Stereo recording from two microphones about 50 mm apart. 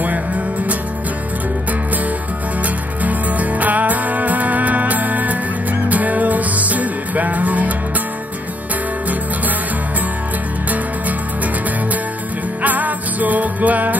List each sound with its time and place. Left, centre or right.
3.0 s music: right
12.6 s music: right